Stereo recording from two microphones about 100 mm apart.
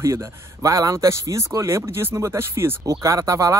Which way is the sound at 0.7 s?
30° right (ahead or behind).